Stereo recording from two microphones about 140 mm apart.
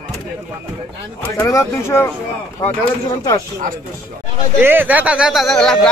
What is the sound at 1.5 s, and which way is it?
Speech, 20° left (ahead or behind).